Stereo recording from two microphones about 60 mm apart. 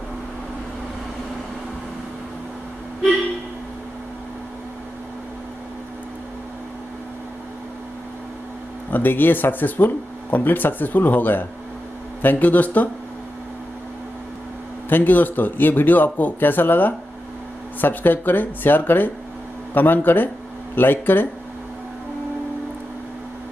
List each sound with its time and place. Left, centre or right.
8.9 s speech: left
14.9 s speech: left